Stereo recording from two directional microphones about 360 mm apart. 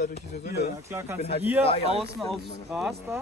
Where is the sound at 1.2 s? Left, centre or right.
Centre.